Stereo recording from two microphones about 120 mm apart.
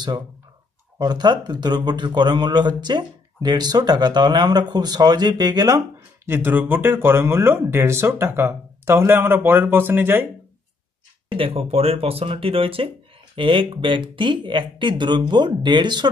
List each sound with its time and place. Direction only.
0.9 s speech: 35° right (ahead or behind)
6.2 s speech: 15° right (ahead or behind)
11.2 s speech: 50° right (ahead or behind)